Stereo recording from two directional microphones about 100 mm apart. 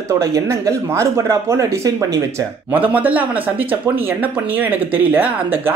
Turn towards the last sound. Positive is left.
turn(degrees=-15)  # may be behind; listen again after turning